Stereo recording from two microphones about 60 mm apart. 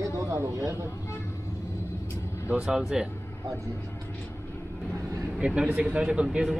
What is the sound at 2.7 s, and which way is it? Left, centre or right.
Speech, centre.